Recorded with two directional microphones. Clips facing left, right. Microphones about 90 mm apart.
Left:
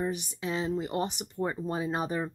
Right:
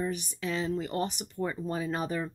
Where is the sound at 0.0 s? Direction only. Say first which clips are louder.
Left 1 dB; 20° left (ahead or behind).